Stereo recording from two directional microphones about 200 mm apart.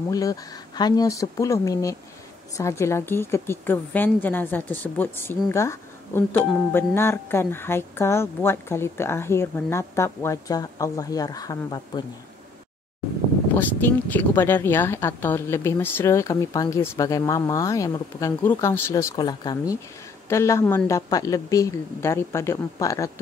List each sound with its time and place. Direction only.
0.1 s a woman's voice: 20° left (ahead or behind)
13.6 s a woman's voice: 10° left (ahead or behind)